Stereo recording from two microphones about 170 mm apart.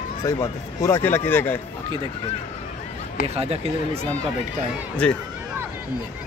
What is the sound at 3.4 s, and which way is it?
Speech, 35° right (ahead or behind).